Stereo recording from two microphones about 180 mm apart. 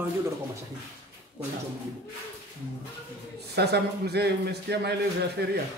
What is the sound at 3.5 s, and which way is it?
A man's voice, 65° right (ahead or behind).